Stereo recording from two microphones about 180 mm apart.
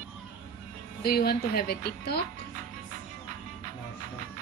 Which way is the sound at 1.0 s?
60° left (ahead or behind).